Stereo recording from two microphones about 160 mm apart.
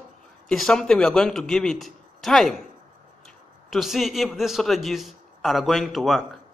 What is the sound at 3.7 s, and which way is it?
A man's voice, centre (ahead or behind).